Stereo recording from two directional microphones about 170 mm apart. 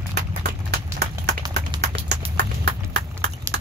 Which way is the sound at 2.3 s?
70° right (ahead or behind).